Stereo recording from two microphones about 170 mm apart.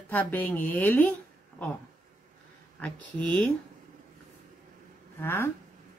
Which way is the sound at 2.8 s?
10° left (ahead or behind).